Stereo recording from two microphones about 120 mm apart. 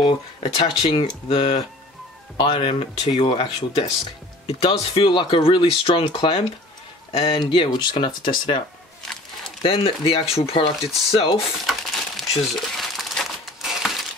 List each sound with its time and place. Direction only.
0.0 s speech: 45° left (ahead or behind)
9.6 s speech: 50° left (ahead or behind)
11.6 s crumpling: centre (ahead or behind)